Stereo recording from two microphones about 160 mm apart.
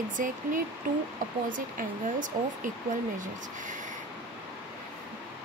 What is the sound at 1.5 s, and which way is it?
Speech, 55° right (ahead or behind).